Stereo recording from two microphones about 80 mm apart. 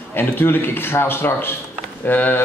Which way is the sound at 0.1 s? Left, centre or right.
Left.